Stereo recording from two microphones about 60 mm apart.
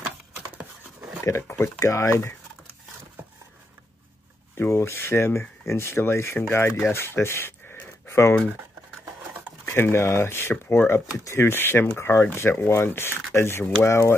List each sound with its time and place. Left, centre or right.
1.8 s speech: left
4.6 s speech: left
9.7 s speech: left